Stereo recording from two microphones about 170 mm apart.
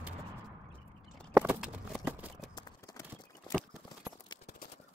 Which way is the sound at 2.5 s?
25° left (ahead or behind).